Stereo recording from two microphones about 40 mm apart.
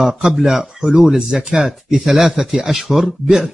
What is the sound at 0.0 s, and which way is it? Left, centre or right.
Speech, centre.